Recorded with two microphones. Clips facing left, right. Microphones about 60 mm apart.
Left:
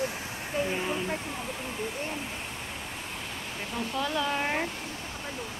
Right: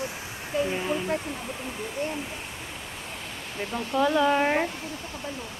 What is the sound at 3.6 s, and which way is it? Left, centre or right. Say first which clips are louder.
Speech: right 7 dB; centre.